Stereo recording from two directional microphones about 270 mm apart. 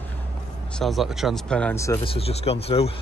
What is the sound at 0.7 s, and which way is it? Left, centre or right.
Speech, centre.